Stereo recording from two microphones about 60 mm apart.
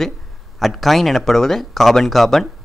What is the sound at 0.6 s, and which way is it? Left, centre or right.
Speech, centre.